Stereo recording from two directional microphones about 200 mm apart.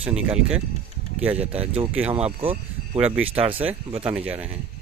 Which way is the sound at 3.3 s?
30° right (ahead or behind).